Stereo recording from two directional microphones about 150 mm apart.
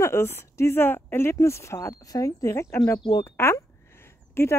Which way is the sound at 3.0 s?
25° left (ahead or behind).